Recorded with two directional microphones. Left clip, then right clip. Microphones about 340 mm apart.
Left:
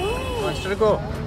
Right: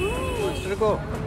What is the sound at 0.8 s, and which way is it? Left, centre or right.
Speech, left.